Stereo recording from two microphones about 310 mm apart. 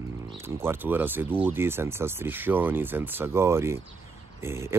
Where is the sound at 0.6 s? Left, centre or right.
Centre.